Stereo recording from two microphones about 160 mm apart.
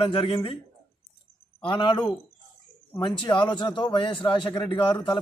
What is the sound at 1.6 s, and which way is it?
Speech, 30° left (ahead or behind).